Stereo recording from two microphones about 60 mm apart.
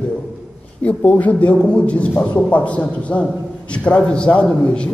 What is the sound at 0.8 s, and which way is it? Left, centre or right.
A man's voice, left.